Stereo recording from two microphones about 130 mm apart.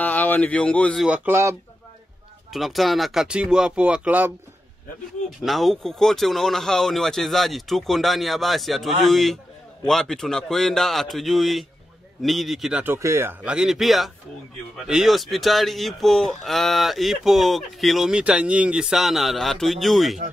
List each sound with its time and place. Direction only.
0.0 s speech: 15° left (ahead or behind)
1.0 s speech: 15° right (ahead or behind)
2.5 s speech: centre (ahead or behind)
5.4 s speech: centre (ahead or behind)
12.8 s speech: 20° right (ahead or behind); by 20.2 s centre (ahead or behind)